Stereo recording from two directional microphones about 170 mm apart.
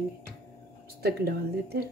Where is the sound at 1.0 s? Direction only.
65° right (ahead or behind).